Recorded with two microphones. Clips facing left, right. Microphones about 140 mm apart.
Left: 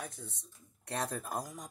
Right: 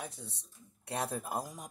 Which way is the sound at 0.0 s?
15° right (ahead or behind).